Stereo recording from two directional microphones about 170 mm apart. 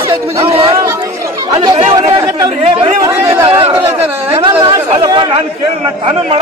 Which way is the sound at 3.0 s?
15° right (ahead or behind).